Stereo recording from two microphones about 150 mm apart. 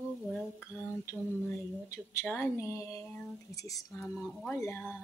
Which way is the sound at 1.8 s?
20° left (ahead or behind).